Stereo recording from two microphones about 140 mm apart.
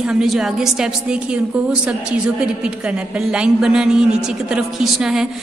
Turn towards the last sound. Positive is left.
turn(degrees=-5)  # may be behind; listen again after turning